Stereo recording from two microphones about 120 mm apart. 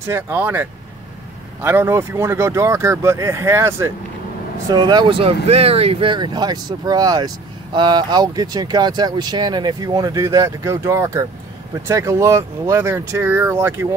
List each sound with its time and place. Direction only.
0.0 s speech: 20° right (ahead or behind)
4.6 s speech: 35° right (ahead or behind); by 13.8 s 20° right (ahead or behind)